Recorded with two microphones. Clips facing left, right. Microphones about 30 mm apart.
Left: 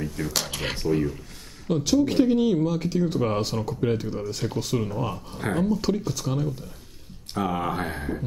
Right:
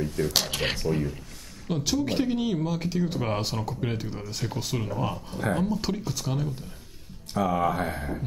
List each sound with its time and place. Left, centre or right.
0.2 s speech: right
0.8 s speech: centre
7.5 s speech: left